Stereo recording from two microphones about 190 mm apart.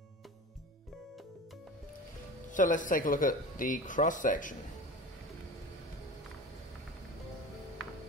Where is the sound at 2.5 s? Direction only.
45° left (ahead or behind).